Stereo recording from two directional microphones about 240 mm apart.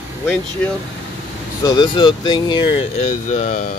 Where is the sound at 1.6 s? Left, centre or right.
Centre.